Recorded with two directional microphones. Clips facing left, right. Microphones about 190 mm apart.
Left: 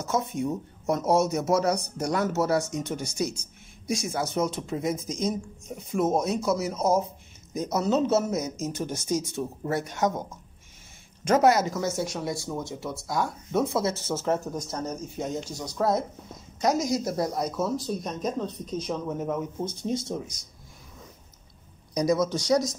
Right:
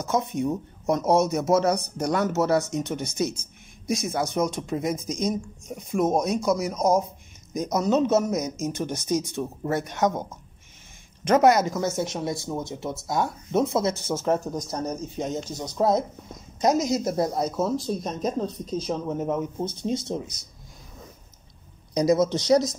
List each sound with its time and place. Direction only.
0.0 s a man's voice: 20° right (ahead or behind)
11.3 s speech: 20° right (ahead or behind)
21.9 s speech: 20° right (ahead or behind)